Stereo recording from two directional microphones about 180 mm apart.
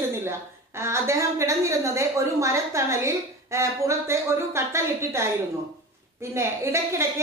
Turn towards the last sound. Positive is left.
turn(degrees=-15)  # may be behind; listen again after turning